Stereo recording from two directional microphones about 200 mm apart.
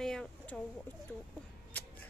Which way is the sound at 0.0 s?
5° left (ahead or behind).